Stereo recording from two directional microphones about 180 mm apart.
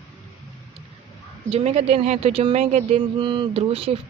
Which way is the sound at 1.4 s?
35° right (ahead or behind).